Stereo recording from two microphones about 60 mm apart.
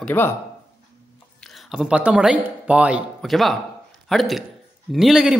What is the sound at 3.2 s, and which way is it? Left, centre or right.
Speech, centre.